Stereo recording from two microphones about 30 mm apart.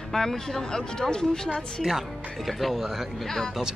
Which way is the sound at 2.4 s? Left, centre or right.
Centre.